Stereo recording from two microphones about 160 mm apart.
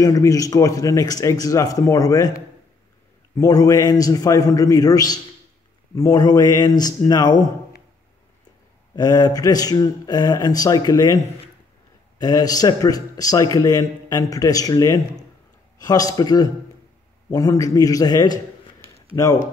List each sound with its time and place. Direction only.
0.0 s a man's voice: 20° left (ahead or behind)
8.9 s a man's voice: 25° left (ahead or behind)
12.2 s a man's voice: 25° left (ahead or behind)